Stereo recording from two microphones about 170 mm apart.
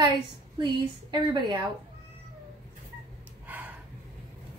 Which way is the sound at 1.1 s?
25° right (ahead or behind).